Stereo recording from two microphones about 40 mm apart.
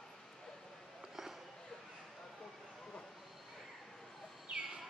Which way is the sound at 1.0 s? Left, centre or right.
Centre.